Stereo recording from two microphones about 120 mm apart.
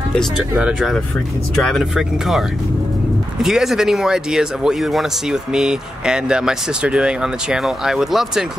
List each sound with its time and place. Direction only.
0.4 s speech: 10° right (ahead or behind)
1.5 s speech: 5° left (ahead or behind)
3.4 s speech: 5° right (ahead or behind)